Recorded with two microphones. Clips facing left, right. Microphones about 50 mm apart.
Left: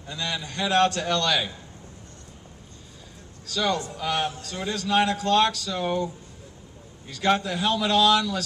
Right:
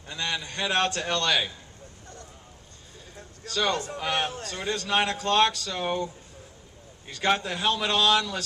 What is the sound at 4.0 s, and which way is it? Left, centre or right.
A man's voice, right.